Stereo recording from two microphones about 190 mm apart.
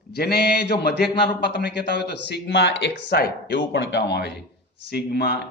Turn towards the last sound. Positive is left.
turn(degrees=60)  # may be behind; listen again after turning